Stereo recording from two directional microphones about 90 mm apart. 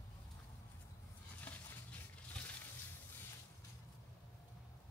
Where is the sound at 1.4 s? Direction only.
15° left (ahead or behind).